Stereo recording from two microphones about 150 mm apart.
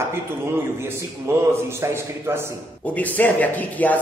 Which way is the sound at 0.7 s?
15° right (ahead or behind).